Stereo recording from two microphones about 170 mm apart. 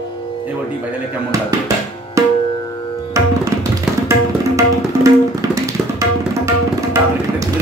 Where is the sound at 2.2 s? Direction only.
20° right (ahead or behind).